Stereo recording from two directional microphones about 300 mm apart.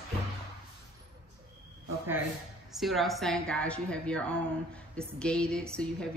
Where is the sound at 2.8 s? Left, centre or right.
Centre.